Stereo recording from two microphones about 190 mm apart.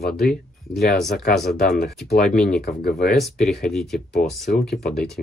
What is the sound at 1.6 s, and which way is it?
Speech, 55° left (ahead or behind).